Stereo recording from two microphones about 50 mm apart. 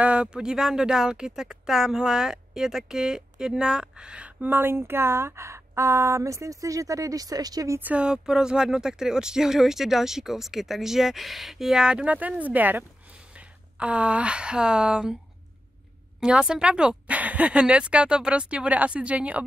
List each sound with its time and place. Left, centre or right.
0.0 s speech: right
4.4 s speech: right
8.0 s speech: centre
12.2 s speech: right
16.2 s speech: centre